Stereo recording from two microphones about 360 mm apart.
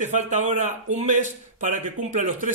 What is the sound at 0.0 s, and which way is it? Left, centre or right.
A man's voice, centre.